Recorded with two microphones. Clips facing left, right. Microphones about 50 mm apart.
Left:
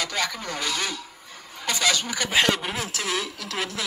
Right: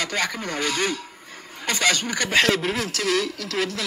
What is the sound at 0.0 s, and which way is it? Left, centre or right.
A man's voice, right.